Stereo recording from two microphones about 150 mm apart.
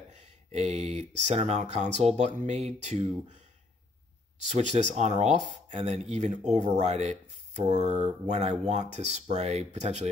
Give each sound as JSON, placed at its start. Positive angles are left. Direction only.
{"t": 0.5, "sound": "speech", "side_deg": -45}
{"t": 4.5, "sound": "speech", "side_deg": -50}